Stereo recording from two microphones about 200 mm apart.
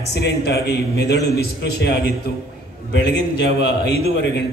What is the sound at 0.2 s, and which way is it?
A man's voice, 55° left (ahead or behind).